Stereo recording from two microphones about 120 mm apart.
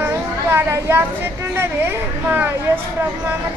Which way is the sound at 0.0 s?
20° right (ahead or behind).